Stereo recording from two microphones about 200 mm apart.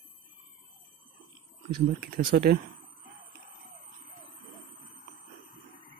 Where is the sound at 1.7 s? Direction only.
45° right (ahead or behind).